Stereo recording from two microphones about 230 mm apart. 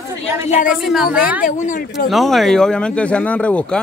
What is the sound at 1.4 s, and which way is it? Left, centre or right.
Speech, left.